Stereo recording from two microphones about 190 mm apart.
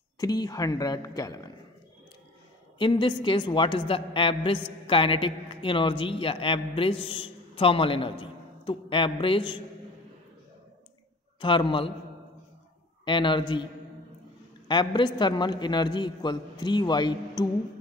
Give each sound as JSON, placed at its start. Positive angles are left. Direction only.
{"t": 0.2, "sound": "a man's voice", "side_deg": 20}
{"t": 2.8, "sound": "a man's voice", "side_deg": 25}
{"t": 11.4, "sound": "a man's voice", "side_deg": 25}
{"t": 13.0, "sound": "a man's voice", "side_deg": 25}
{"t": 14.7, "sound": "a man's voice", "side_deg": 25}